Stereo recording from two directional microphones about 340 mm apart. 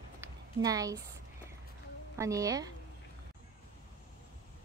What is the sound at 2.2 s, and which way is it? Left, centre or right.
Speech, centre.